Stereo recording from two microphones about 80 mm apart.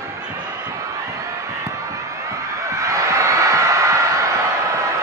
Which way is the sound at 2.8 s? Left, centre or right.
Right.